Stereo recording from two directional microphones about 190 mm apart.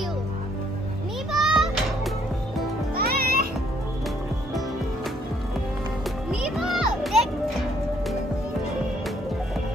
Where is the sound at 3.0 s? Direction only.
50° right (ahead or behind).